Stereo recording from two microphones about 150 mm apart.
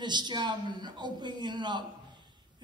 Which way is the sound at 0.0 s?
30° right (ahead or behind).